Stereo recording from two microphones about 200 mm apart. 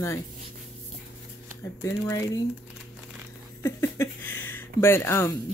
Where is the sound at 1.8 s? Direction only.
15° left (ahead or behind).